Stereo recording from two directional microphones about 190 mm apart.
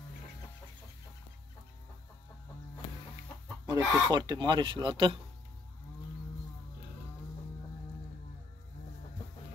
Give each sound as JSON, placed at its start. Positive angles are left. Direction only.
{"t": 3.6, "sound": "speech", "side_deg": -20}